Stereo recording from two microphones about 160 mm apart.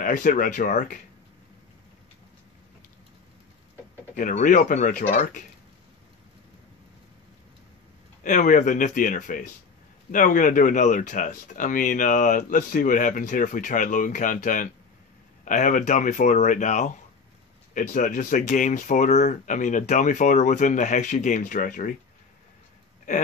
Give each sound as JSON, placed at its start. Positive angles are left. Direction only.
{"t": 0.0, "sound": "speech", "side_deg": 55}
{"t": 4.2, "sound": "speech", "side_deg": 55}
{"t": 8.2, "sound": "speech", "side_deg": 55}